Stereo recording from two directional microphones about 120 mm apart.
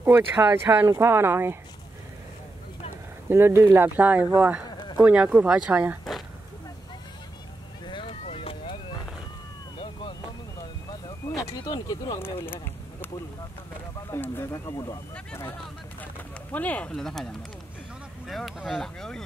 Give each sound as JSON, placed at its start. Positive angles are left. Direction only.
{"t": 0.0, "sound": "speech", "side_deg": -15}
{"t": 3.3, "sound": "speech", "side_deg": -20}
{"t": 7.8, "sound": "vehicle", "side_deg": 40}
{"t": 8.3, "sound": "vehicle", "side_deg": 50}
{"t": 11.1, "sound": "a sound", "side_deg": 25}
{"t": 14.1, "sound": "speech", "side_deg": 20}
{"t": 16.5, "sound": "speech", "side_deg": 10}